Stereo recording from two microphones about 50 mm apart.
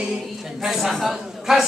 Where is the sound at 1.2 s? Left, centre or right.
Centre.